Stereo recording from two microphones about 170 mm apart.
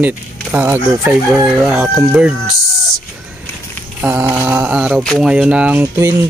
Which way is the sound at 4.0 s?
10° right (ahead or behind).